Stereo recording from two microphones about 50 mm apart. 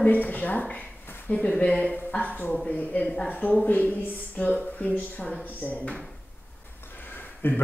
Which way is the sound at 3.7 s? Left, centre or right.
Left.